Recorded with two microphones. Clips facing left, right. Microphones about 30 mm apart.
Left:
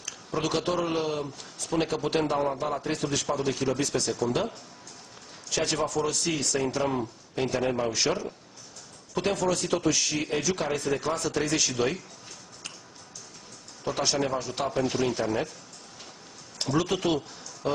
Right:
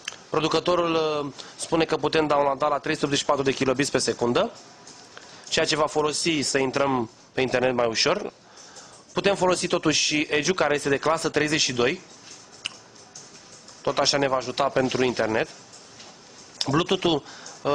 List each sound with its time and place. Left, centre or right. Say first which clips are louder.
0.3 s speech: right 5 dB; right
1.2 s speech: right 3 dB; right
2.8 s speech: right 4 dB; right
5.5 s speech: right 5 dB; right
6.7 s speech: right 5 dB; right
12.6 s music: right 8 dB; right
13.8 s speech: right 5 dB; right
16.7 s speech: right 4 dB; right
17.6 s speech: right 4 dB; right